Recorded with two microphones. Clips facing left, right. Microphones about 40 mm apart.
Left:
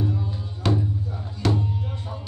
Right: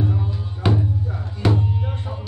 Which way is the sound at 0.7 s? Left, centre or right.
Centre.